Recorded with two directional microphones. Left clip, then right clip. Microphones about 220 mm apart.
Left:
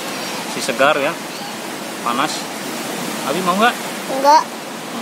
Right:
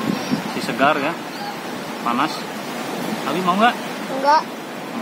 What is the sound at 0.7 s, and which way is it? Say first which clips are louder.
Speech: left 3 dB; 15° left (ahead or behind).